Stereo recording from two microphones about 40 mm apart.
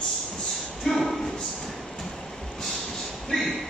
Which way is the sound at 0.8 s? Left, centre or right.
Centre.